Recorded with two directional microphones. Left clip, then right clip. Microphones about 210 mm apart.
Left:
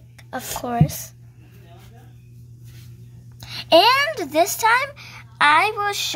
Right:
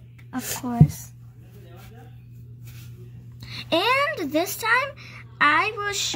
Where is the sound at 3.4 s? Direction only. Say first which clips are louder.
Left 9 dB; 40° left (ahead or behind).